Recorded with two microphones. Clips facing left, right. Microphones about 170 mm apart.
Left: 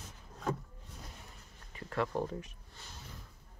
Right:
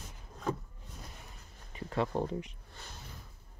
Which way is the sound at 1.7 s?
20° right (ahead or behind).